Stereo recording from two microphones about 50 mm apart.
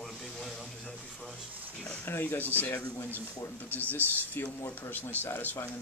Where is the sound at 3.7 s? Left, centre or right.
Left.